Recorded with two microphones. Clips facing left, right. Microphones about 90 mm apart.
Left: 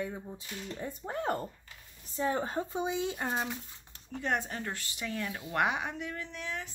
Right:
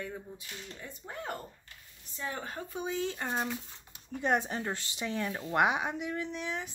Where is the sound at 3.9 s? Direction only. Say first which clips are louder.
Right 3 dB; 20° right (ahead or behind).